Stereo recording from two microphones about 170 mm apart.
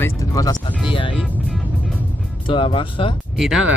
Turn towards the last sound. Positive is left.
turn(degrees=0)  # may be behind; listen again after turning